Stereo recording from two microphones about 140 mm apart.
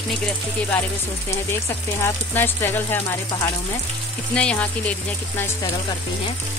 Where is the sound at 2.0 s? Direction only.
15° left (ahead or behind).